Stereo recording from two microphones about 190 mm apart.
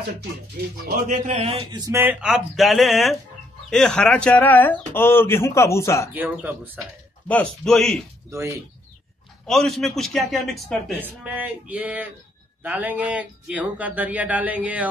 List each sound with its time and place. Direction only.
1.2 s a man's voice: 35° right (ahead or behind)
1.9 s speech: 15° right (ahead or behind)
2.2 s a man's voice: centre (ahead or behind); by 6.0 s 15° left (ahead or behind)
6.1 s speech: 10° right (ahead or behind)
7.2 s a man's voice: 5° left (ahead or behind)
8.3 s speech: 15° right (ahead or behind)
9.5 s a man's voice: centre (ahead or behind)